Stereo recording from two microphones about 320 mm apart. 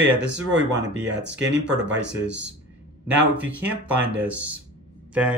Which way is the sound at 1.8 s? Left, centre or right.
Right.